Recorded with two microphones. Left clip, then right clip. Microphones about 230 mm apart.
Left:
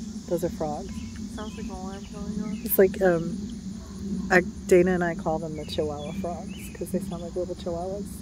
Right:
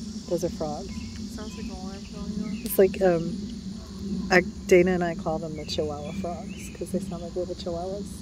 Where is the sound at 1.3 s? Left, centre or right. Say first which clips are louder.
Left 3 dB; centre.